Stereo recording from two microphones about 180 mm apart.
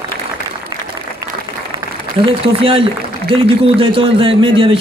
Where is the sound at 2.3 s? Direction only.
30° right (ahead or behind).